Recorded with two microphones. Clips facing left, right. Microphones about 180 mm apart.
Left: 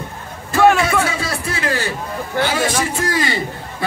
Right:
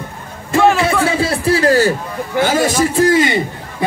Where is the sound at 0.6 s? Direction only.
Centre (ahead or behind).